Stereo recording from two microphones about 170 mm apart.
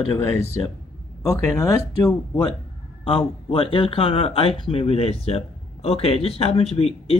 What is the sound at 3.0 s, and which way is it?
Speech, 30° left (ahead or behind).